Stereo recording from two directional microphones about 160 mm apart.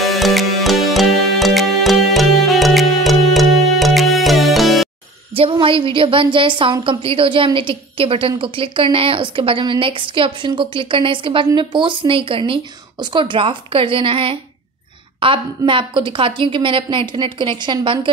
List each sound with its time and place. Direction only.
0.0 s music: centre (ahead or behind)
5.3 s a woman's voice: 35° right (ahead or behind)